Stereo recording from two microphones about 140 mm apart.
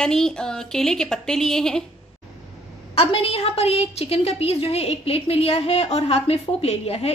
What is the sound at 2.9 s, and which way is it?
A woman's voice, 45° left (ahead or behind).